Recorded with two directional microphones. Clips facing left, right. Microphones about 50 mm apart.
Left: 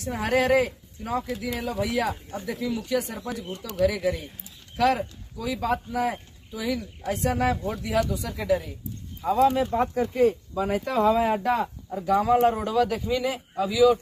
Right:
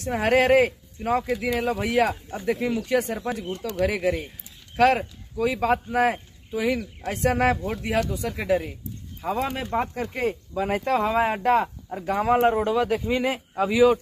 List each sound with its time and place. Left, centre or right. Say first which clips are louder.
0.0 s speech: right 3 dB; right
9.7 s speech: left 2 dB; right